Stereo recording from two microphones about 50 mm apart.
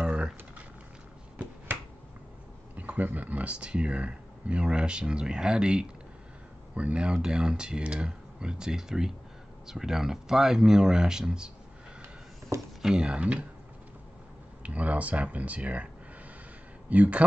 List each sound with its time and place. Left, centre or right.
0.0 s a sound: right
2.7 s a sound: right
3.2 s speech: right; by 11.5 s centre
12.5 s speech: right
12.8 s speech: centre
14.6 s speech: right
16.9 s speech: right